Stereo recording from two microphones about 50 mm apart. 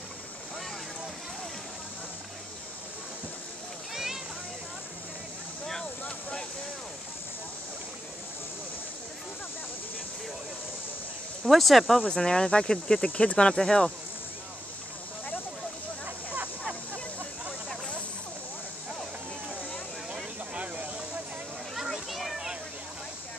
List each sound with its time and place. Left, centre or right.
3.9 s a sound: centre
11.4 s speech: centre
12.2 s speech: centre
13.1 s speech: left
20.5 s hiss: right
21.7 s children playing: centre